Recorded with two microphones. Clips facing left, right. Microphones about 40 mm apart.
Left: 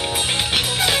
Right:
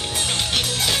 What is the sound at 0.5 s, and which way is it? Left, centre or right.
Music, centre.